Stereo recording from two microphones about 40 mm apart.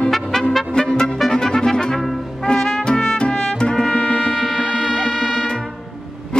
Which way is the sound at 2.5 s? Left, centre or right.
Left.